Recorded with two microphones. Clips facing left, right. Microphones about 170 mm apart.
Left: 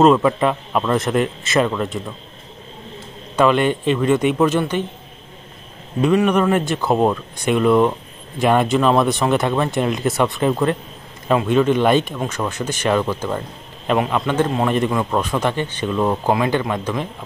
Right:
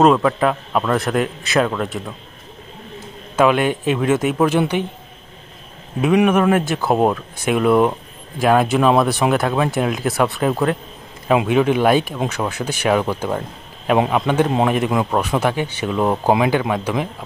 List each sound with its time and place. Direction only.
0.0 s speech: centre (ahead or behind)
3.3 s a man's voice: 5° right (ahead or behind)
5.9 s a man's voice: 5° right (ahead or behind)